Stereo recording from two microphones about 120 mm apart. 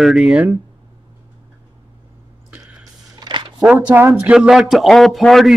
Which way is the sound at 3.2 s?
35° right (ahead or behind).